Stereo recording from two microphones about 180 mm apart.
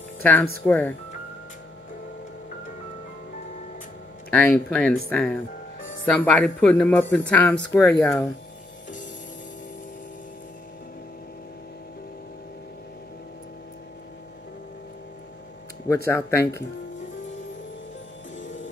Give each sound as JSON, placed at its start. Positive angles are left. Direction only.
{"t": 0.2, "sound": "speech", "side_deg": 10}
{"t": 4.3, "sound": "speech", "side_deg": 5}
{"t": 7.6, "sound": "speech", "side_deg": 15}
{"t": 15.9, "sound": "speech", "side_deg": 15}